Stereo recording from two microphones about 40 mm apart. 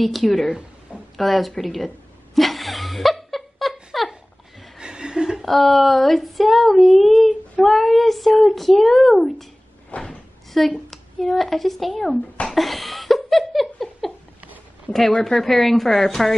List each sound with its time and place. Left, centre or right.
0.0 s a child's voice: centre
2.3 s laughter: centre
3.9 s a sound: centre
4.7 s chuckle: right
5.4 s a child's voice: centre
9.9 s door: left
10.6 s a child's voice: centre
12.0 s speech: left
12.4 s laughter: centre
14.0 s a sound: centre
14.9 s a woman's voice: centre